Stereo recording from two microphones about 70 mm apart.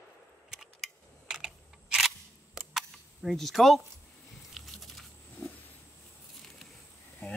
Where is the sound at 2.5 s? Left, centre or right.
Centre.